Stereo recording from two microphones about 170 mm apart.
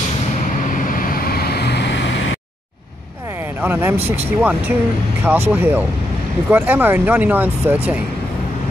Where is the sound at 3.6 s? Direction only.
10° right (ahead or behind).